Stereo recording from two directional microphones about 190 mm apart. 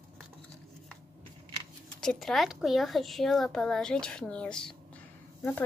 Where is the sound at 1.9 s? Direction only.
Centre (ahead or behind).